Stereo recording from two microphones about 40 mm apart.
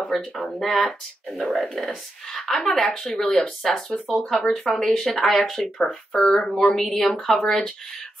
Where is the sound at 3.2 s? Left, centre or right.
Left.